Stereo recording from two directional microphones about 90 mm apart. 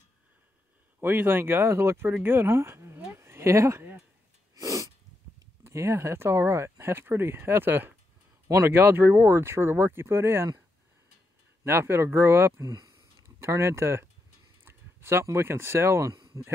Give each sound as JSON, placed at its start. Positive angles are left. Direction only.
{"t": 1.0, "sound": "speech", "side_deg": -25}
{"t": 3.2, "sound": "a sound", "side_deg": -30}
{"t": 4.6, "sound": "sneeze", "side_deg": -40}
{"t": 5.6, "sound": "speech", "side_deg": -30}
{"t": 11.6, "sound": "speech", "side_deg": -25}
{"t": 12.6, "sound": "speech", "side_deg": -45}
{"t": 13.4, "sound": "speech", "side_deg": -30}
{"t": 16.1, "sound": "a sound", "side_deg": -55}